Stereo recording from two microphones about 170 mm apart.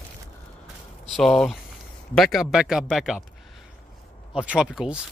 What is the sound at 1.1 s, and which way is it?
Speech, centre (ahead or behind).